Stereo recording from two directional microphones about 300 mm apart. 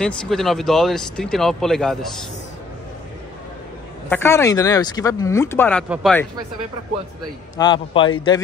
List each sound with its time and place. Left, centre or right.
0.0 s speech: centre
4.1 s speech: centre
7.5 s speech: centre